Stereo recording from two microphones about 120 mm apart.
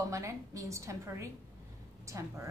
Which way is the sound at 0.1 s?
25° right (ahead or behind).